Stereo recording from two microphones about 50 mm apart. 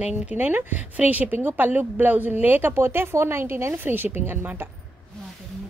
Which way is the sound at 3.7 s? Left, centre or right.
Right.